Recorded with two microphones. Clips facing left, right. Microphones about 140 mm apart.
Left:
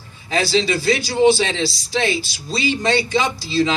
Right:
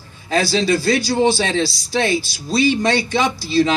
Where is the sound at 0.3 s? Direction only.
45° right (ahead or behind).